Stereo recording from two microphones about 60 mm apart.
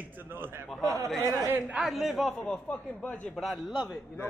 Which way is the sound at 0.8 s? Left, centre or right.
Right.